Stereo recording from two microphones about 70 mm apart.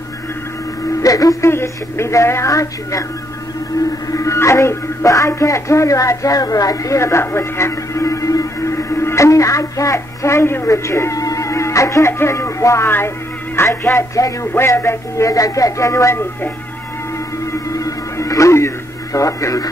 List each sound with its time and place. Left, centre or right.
1.0 s speech: left
1.5 s speech: left
4.1 s speech: left
17.5 s music: left
19.1 s speech: left